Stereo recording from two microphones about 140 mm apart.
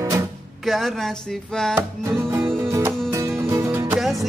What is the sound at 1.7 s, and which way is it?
Music, 20° right (ahead or behind).